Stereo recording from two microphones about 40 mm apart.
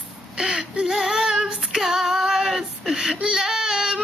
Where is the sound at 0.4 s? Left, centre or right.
Centre.